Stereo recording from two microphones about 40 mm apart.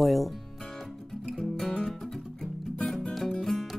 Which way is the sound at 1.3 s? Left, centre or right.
Centre.